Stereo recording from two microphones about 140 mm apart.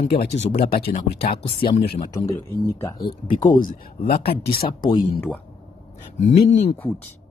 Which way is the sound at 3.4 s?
70° left (ahead or behind).